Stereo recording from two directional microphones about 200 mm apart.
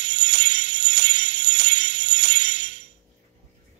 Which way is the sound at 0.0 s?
60° right (ahead or behind).